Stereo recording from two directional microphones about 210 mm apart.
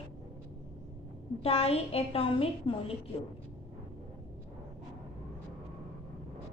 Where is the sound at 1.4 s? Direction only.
30° left (ahead or behind).